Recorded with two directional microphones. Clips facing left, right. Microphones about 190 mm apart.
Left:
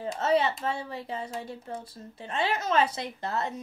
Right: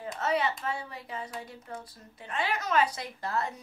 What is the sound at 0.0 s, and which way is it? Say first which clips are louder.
Speech: left 4 dB; 30° left (ahead or behind).